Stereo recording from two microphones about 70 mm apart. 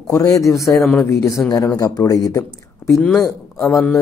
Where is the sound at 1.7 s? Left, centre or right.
Left.